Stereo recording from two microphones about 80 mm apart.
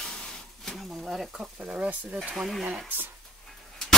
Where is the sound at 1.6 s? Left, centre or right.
Centre.